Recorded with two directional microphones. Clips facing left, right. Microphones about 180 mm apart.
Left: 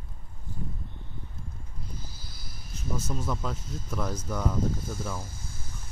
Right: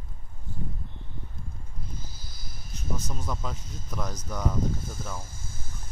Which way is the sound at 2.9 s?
5° left (ahead or behind).